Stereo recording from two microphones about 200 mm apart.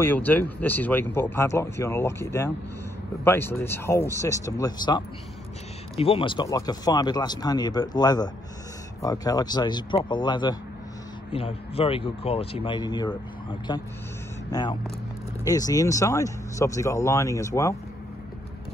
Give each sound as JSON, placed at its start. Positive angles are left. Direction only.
{"t": 0.0, "sound": "speech", "side_deg": 10}